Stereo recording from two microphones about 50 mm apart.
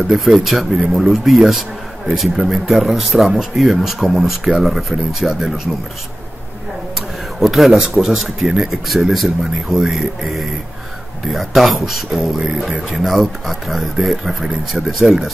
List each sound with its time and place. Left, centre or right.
0.0 s speech: centre
7.3 s speech: centre
7.7 s speech: centre
8.0 s speech: centre